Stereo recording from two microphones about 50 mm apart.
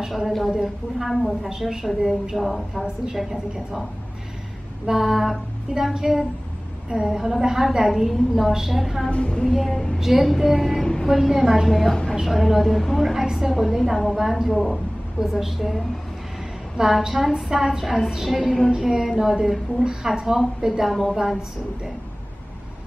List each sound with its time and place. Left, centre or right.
0.1 s a woman's voice: centre
1.5 s a woman's voice: centre
2.8 s a woman's voice: centre
4.8 s a woman's voice: centre
9.1 s speech: centre
9.5 s child singing: centre
9.9 s a woman's voice: centre
18.7 s a woman's voice: centre